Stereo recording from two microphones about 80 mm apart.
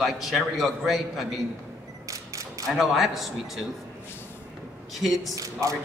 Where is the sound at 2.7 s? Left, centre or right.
Centre.